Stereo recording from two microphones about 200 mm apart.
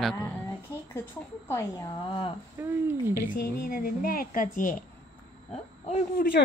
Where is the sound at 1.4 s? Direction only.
15° left (ahead or behind).